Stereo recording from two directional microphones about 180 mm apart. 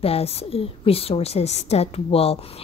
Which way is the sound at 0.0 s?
35° left (ahead or behind).